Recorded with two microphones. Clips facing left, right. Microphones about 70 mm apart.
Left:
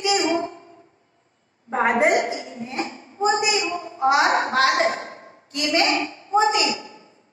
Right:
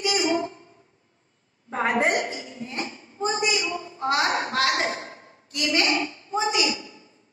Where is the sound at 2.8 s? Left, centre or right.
Left.